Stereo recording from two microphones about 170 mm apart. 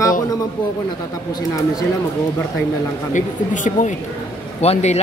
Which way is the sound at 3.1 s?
45° left (ahead or behind).